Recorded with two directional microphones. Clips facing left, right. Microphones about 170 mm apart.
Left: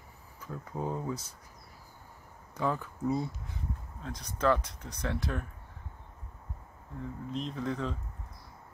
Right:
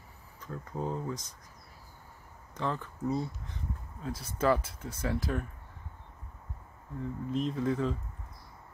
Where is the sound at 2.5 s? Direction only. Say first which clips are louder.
Left 2 dB; 10° left (ahead or behind).